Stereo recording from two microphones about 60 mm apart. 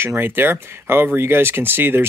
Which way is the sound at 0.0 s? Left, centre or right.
Right.